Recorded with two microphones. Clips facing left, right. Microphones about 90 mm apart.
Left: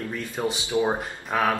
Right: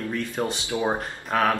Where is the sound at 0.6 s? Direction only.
20° right (ahead or behind).